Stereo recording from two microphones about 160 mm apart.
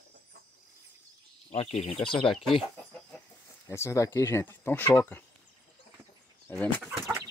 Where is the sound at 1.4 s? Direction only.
40° left (ahead or behind).